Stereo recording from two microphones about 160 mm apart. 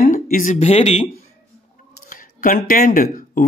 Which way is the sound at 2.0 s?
55° left (ahead or behind).